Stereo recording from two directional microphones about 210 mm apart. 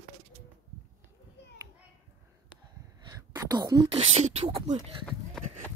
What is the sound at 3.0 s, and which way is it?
Speech, 15° right (ahead or behind).